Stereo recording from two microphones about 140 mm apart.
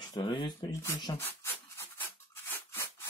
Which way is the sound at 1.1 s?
25° left (ahead or behind).